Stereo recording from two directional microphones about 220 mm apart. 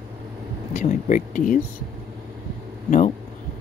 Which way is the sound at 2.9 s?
35° left (ahead or behind).